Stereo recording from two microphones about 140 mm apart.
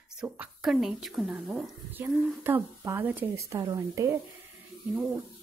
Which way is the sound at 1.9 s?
15° right (ahead or behind).